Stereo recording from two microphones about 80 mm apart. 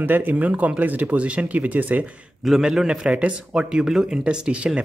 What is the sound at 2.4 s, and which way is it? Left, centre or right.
Speech, centre.